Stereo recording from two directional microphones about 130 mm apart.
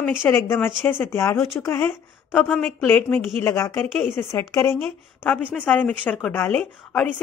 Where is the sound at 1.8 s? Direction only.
5° left (ahead or behind).